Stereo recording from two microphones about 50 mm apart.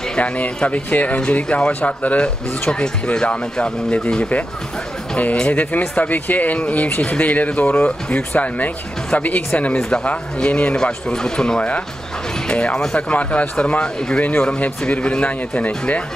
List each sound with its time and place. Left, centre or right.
0.2 s speech: left
9.8 s speech: centre
10.0 s speech: left